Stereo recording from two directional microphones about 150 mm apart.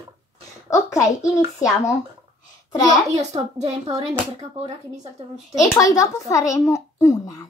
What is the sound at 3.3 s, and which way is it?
Speech, 45° right (ahead or behind).